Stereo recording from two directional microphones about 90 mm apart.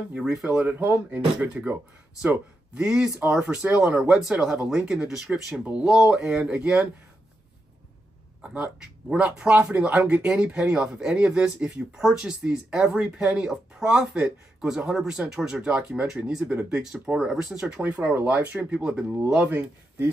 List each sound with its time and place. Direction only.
0.1 s speech: 5° right (ahead or behind)
9.1 s speech: 10° right (ahead or behind)